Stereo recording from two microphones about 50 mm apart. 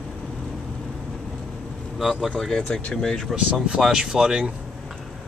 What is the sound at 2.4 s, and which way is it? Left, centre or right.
Speech, centre.